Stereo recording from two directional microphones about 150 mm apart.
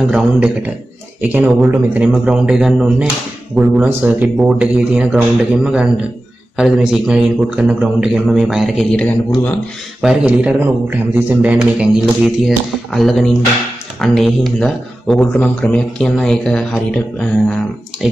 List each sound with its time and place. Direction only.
0.1 s speech: 10° right (ahead or behind)
10.0 s speech: 5° right (ahead or behind)